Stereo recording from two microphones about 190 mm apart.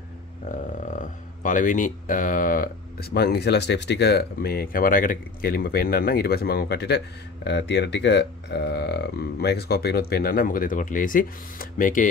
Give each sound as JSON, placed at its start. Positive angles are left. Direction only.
{"t": 0.5, "sound": "speech", "side_deg": 40}